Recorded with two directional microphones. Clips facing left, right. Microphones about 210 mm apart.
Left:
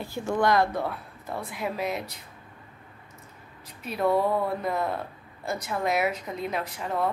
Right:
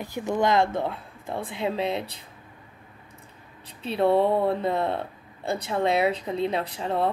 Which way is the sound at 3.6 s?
30° right (ahead or behind).